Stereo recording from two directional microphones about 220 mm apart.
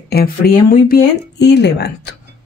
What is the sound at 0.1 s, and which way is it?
Speech, 45° left (ahead or behind).